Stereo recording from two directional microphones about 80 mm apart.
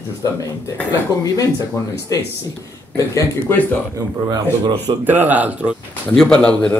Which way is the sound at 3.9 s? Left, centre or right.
Right.